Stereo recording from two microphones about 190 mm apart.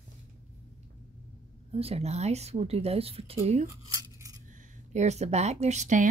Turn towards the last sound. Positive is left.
turn(degrees=-40)  # may be behind; listen again after turning